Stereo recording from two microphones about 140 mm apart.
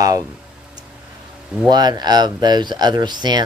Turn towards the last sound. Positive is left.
turn(degrees=-30)  # may be behind; listen again after turning